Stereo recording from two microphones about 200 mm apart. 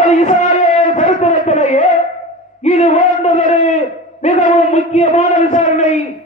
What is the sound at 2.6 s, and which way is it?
A man's voice, 35° left (ahead or behind).